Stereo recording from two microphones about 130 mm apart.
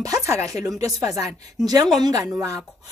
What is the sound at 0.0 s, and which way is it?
Speech, 25° right (ahead or behind).